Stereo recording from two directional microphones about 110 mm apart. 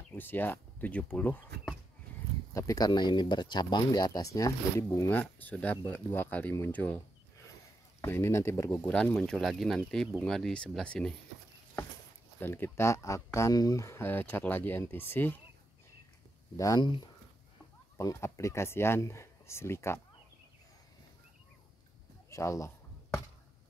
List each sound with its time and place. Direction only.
0.1 s speech: 20° left (ahead or behind)
2.5 s speech: 30° left (ahead or behind)
2.9 s speech: 45° left (ahead or behind); by 7.0 s 15° left (ahead or behind)
8.0 s speech: 25° left (ahead or behind); by 11.1 s 10° left (ahead or behind)
12.4 s speech: 20° left (ahead or behind)
16.5 s speech: 30° left (ahead or behind)
17.9 s speech: 25° left (ahead or behind)
22.3 s speech: 25° left (ahead or behind)